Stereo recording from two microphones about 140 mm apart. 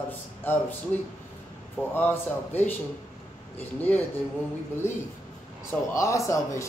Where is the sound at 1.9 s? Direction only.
15° left (ahead or behind).